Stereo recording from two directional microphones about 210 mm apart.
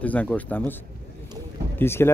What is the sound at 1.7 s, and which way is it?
Speech, 10° left (ahead or behind).